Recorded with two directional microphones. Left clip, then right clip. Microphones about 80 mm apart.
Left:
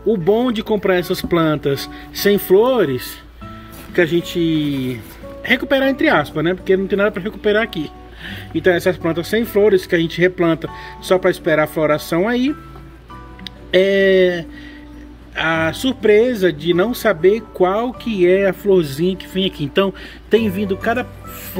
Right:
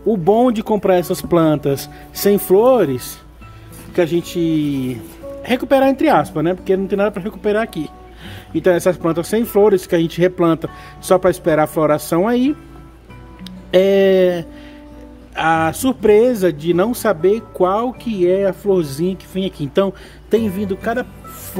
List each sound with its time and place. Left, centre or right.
0.2 s speech: right
3.9 s speech: centre
8.6 s speech: right
18.4 s speech: centre
18.9 s speech: centre